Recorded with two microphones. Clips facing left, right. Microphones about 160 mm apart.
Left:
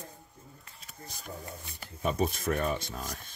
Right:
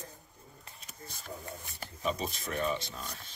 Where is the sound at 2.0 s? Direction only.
50° left (ahead or behind).